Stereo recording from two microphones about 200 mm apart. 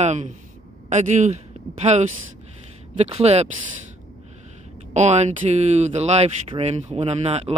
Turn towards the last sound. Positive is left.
turn(degrees=-30)  # may be behind; listen again after turning